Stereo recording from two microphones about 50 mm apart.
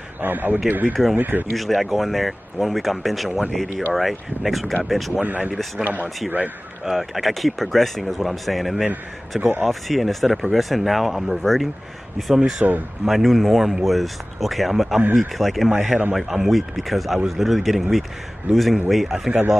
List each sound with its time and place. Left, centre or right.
0.2 s speech: right
1.5 s speech: centre
5.2 s speech: right
6.0 s speech: centre
12.6 s speech: centre
13.0 s speech: centre